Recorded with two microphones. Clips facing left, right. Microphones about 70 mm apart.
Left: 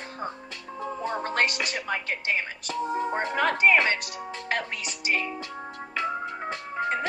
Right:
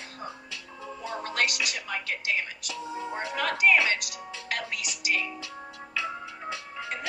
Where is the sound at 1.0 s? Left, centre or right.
Left.